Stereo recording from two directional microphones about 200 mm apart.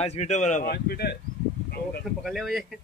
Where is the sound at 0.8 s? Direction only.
50° left (ahead or behind).